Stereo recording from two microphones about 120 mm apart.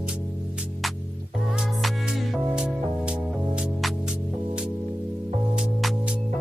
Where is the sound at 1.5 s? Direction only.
5° right (ahead or behind).